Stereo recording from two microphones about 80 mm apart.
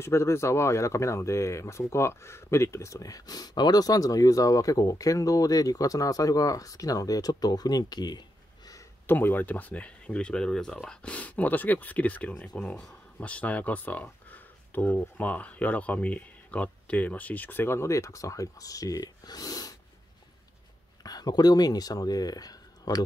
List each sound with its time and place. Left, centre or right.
0.0 s speech: left
9.0 s speech: left
21.0 s speech: left